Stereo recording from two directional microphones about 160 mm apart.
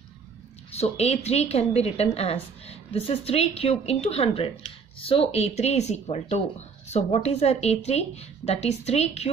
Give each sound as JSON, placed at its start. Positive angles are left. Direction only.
{"t": 0.7, "sound": "a woman's voice", "side_deg": 40}